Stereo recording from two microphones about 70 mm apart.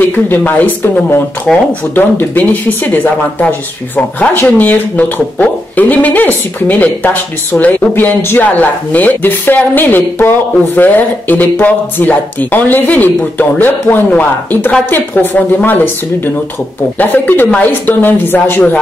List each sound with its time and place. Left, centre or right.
0.0 s speech: left
1.5 s speech: centre
2.0 s speech: left
17.0 s speech: left